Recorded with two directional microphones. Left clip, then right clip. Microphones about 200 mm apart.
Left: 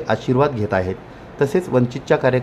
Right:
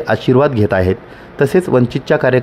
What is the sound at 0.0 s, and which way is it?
Speech, 30° right (ahead or behind).